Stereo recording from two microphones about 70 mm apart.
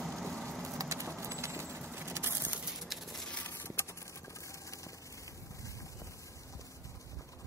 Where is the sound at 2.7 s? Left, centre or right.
Centre.